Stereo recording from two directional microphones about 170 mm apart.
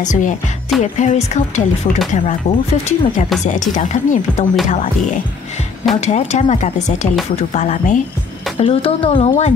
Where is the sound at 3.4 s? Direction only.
45° left (ahead or behind).